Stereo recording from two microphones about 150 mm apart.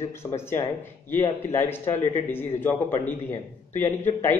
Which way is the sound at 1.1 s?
15° left (ahead or behind).